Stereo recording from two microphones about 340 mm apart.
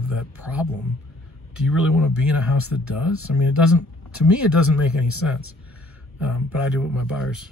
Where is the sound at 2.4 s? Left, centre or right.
Left.